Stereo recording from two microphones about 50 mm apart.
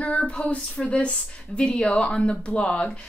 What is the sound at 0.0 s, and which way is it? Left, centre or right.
Female singing, left.